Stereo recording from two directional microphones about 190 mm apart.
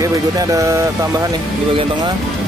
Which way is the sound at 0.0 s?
20° right (ahead or behind).